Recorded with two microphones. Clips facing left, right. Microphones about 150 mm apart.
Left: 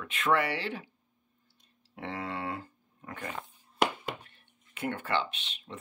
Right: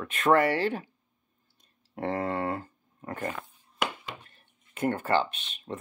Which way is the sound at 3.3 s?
25° left (ahead or behind).